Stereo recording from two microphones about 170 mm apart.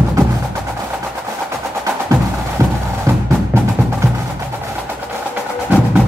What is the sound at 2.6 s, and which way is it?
Music, 20° right (ahead or behind).